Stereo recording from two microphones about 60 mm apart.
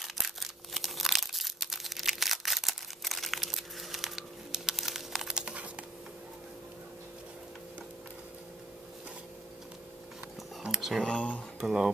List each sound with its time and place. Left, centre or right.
0.0 s crumpling: centre
5.4 s computer keyboard: centre
10.6 s a sound: centre
11.1 s speech: left